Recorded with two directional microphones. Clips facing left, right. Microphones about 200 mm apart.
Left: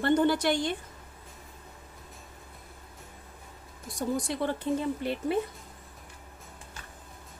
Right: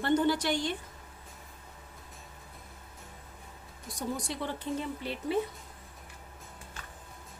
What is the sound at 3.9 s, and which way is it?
A woman's voice, 55° left (ahead or behind).